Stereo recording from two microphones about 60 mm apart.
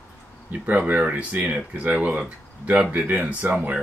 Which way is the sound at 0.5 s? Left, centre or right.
Right.